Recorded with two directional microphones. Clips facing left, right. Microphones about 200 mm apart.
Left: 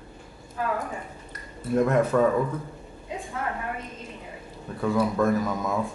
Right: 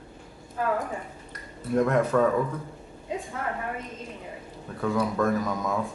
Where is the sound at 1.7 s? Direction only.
5° left (ahead or behind).